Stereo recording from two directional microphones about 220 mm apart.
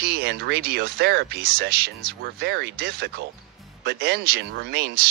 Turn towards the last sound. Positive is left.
turn(degrees=-45)  # may be behind; listen again after turning